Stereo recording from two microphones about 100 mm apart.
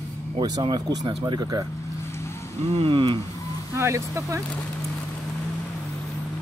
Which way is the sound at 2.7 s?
80° right.